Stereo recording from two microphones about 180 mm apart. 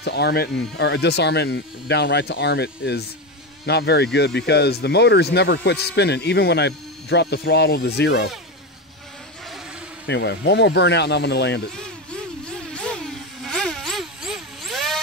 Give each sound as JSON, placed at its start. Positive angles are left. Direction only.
{"t": 0.0, "sound": "speech", "side_deg": 65}
{"t": 10.0, "sound": "speech", "side_deg": 75}
{"t": 11.7, "sound": "a sound", "side_deg": 5}